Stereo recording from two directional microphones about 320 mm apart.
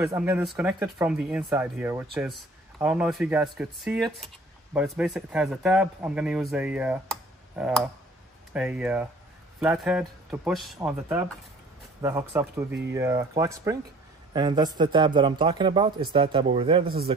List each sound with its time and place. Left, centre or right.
0.0 s a man's voice: centre
16.8 s speech: right